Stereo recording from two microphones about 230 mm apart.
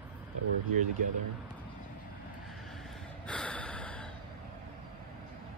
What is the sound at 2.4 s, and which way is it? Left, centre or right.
Gasp, centre.